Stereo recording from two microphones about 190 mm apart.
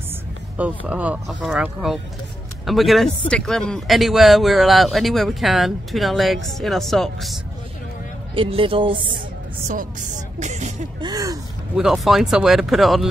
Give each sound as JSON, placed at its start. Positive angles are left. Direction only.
{"t": 0.6, "sound": "speech", "side_deg": -5}
{"t": 8.4, "sound": "speech", "side_deg": -30}
{"t": 9.7, "sound": "speech", "side_deg": -40}
{"t": 11.0, "sound": "gasp", "side_deg": -20}
{"t": 11.7, "sound": "speech", "side_deg": 0}